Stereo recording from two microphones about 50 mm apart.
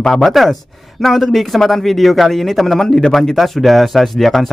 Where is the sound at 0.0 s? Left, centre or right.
Centre.